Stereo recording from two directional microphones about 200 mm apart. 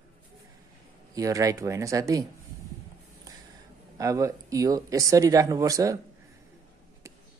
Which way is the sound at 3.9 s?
15° right (ahead or behind).